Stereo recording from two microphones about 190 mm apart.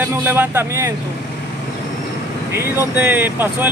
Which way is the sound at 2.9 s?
10° right (ahead or behind).